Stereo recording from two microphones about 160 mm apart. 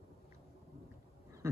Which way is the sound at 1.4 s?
15° right (ahead or behind).